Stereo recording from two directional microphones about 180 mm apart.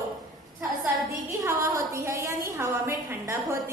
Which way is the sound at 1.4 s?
20° right (ahead or behind).